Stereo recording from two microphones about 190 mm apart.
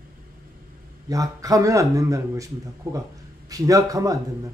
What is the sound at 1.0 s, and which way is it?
A man's voice, 20° right (ahead or behind).